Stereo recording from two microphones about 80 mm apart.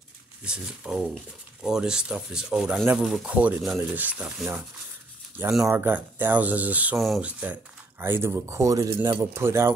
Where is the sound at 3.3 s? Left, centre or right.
Centre.